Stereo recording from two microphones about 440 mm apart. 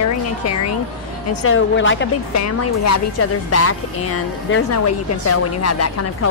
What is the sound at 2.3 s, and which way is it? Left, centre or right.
A woman's voice, left.